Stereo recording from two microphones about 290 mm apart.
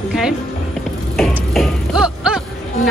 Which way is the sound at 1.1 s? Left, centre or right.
Centre.